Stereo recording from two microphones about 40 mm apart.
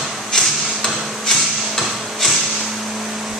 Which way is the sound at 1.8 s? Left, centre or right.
Centre.